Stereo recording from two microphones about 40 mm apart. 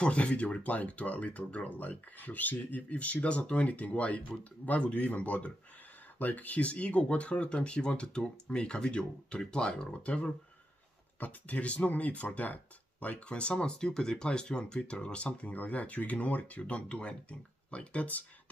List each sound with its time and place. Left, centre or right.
0.0 s speech: left
11.1 s speech: left